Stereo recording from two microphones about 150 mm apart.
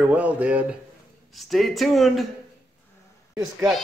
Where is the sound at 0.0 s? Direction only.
10° right (ahead or behind).